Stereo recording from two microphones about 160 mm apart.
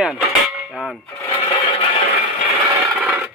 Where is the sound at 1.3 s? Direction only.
30° left (ahead or behind).